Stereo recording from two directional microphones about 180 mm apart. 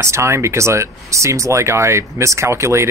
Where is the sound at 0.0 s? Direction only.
15° right (ahead or behind).